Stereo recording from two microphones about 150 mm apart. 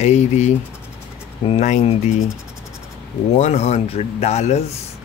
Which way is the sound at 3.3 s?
50° left (ahead or behind).